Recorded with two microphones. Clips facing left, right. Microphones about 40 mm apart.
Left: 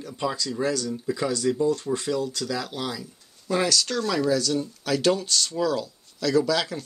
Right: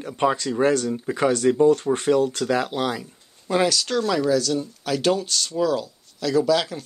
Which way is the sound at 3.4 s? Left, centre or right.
Centre.